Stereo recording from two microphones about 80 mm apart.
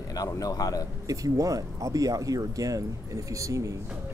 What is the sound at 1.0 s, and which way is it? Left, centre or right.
Speech, right.